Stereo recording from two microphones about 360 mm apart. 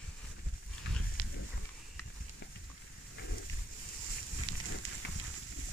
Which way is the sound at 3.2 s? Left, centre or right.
Left.